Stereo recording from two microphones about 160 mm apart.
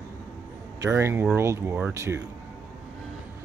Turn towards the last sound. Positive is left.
turn(degrees=-15)  # may be behind; listen again after turning